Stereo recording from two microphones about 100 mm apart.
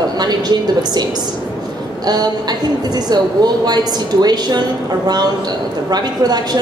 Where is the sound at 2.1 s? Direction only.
45° right (ahead or behind).